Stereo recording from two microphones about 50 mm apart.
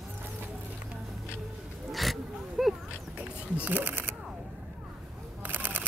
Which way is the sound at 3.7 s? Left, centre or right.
Right.